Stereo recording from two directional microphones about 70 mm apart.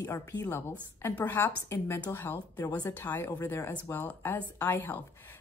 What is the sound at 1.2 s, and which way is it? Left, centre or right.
Speech, left.